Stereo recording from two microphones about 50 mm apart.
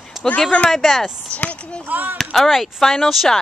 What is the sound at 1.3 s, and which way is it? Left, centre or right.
Speech, left.